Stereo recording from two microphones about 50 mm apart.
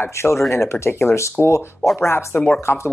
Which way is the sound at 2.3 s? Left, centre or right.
Left.